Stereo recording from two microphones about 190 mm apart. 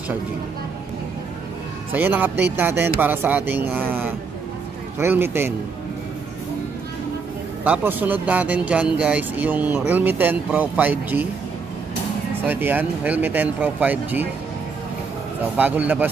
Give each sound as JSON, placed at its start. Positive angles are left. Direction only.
{"t": 1.9, "sound": "speech", "side_deg": -10}
{"t": 7.6, "sound": "speech", "side_deg": -10}
{"t": 12.4, "sound": "speech", "side_deg": -10}
{"t": 15.5, "sound": "speech", "side_deg": -10}